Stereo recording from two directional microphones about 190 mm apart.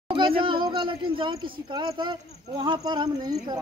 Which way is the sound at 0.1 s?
25° right (ahead or behind).